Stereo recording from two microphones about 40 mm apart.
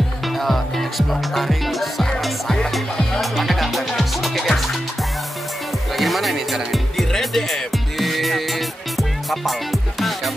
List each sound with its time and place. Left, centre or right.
0.4 s speech: centre
3.2 s music: centre
5.9 s music: centre